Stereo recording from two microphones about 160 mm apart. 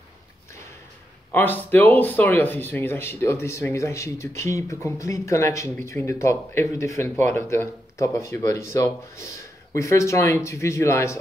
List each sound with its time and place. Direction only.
1.3 s speech: 10° left (ahead or behind)